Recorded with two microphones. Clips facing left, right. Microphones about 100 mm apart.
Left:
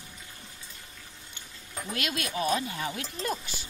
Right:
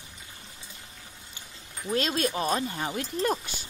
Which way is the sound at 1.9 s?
35° right (ahead or behind).